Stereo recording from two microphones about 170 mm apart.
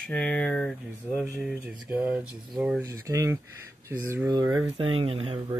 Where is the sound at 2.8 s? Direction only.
15° right (ahead or behind).